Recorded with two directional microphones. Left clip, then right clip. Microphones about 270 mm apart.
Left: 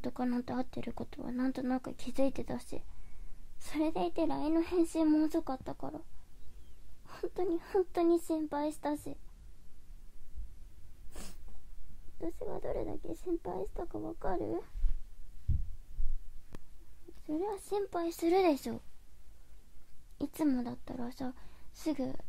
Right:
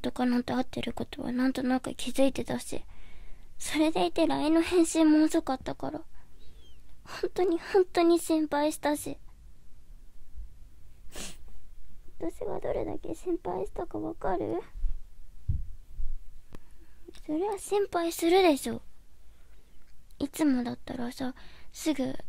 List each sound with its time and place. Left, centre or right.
0.0 s speech: centre
7.1 s speech: right
11.1 s sneeze: right
12.2 s speech: centre
16.5 s a sound: centre
17.1 s speech: centre
20.2 s speech: centre